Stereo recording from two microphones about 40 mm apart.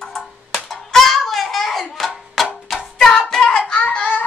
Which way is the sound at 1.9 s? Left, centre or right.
Centre.